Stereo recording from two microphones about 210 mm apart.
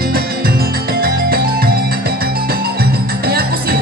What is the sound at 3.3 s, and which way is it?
Music, 45° right (ahead or behind).